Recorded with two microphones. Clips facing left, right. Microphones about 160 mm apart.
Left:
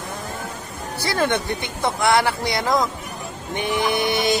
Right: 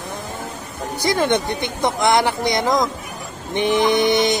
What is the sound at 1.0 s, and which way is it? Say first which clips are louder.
Speech: right 3 dB; 20° right (ahead or behind).